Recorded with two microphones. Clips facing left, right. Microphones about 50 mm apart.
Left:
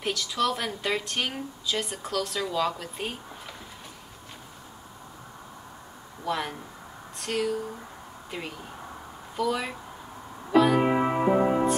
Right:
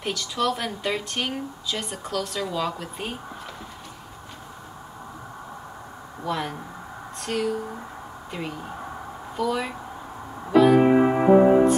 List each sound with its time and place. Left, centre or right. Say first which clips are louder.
0.0 s speech: right 1 dB; centre
6.2 s speech: right 2 dB; centre
10.5 s keyboard: right 5 dB; centre
11.1 s music: right 7 dB; centre